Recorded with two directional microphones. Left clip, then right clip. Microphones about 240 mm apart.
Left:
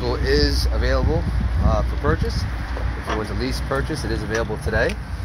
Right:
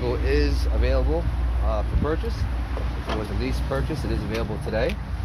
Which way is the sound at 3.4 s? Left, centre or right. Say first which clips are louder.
Left 3 dB; left.